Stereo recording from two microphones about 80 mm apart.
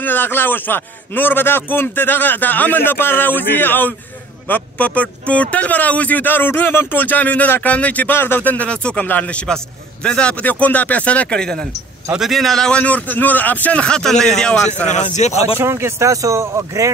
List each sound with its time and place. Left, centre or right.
0.0 s a man's voice: left
12.1 s a man's voice: centre
15.6 s a man's voice: right